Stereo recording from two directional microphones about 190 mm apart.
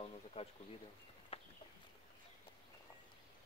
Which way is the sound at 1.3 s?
30° left (ahead or behind).